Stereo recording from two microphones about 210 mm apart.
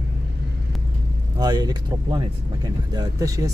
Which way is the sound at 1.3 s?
20° right (ahead or behind).